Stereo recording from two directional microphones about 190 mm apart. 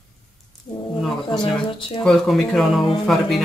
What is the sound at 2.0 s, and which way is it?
Speech, centre (ahead or behind).